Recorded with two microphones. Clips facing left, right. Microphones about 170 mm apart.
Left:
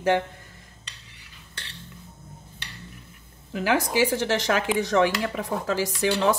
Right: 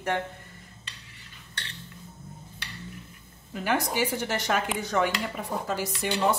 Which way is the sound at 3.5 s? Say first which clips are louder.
Left 4 dB; 90° left.